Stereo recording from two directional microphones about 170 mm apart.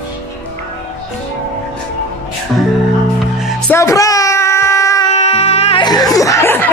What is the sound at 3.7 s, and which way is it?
Music, 15° left (ahead or behind).